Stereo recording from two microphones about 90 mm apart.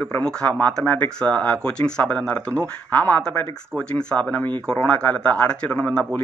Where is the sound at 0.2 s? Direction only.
10° left (ahead or behind).